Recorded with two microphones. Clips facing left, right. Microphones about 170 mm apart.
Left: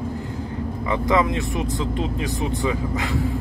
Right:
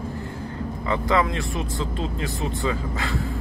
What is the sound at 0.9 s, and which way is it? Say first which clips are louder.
Speech: left 2 dB; 20° left (ahead or behind).